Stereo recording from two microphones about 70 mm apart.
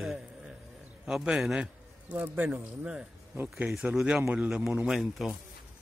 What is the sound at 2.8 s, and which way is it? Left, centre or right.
Speech, centre.